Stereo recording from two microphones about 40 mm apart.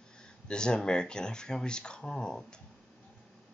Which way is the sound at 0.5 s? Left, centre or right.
Left.